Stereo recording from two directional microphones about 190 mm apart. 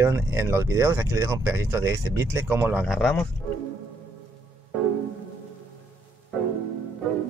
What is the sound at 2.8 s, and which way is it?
Speech, centre (ahead or behind).